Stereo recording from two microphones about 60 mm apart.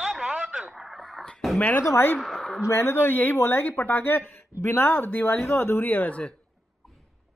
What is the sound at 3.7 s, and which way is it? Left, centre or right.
Speech, left.